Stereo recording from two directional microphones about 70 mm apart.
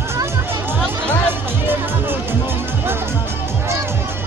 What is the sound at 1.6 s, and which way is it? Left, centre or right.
Music, right.